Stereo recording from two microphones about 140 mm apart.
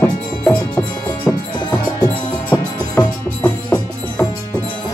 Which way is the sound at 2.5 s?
25° left (ahead or behind).